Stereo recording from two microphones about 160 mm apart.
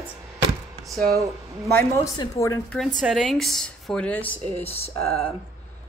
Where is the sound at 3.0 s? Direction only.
5° right (ahead or behind).